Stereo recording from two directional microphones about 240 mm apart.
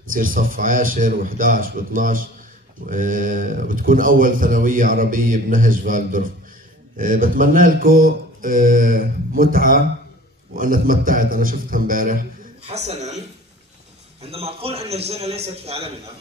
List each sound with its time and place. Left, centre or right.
0.1 s a man's voice: right
14.2 s a man's voice: right